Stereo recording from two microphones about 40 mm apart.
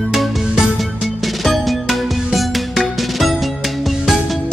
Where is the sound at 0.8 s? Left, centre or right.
Centre.